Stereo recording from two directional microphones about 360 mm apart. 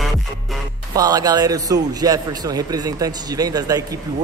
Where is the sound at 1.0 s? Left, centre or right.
Centre.